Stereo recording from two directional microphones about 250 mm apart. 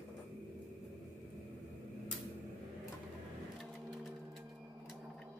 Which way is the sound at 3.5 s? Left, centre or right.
Centre.